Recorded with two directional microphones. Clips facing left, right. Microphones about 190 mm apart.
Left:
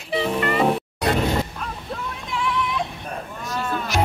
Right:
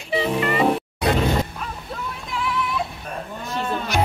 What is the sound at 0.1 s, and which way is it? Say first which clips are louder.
Music: right 1 dB; centre (ahead or behind).